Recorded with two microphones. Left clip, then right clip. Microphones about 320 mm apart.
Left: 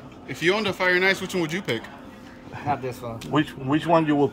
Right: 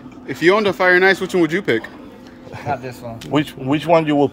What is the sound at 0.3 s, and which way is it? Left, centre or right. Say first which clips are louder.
Speech: right 8 dB; centre.